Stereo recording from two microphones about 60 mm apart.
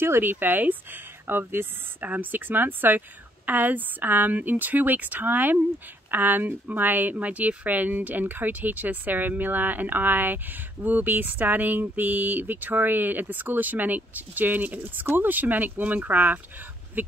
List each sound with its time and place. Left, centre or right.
0.0 s speech: right